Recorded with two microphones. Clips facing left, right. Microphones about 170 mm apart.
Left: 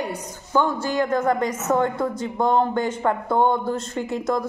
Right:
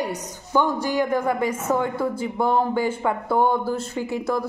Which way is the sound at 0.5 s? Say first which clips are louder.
Even; 15° right (ahead or behind).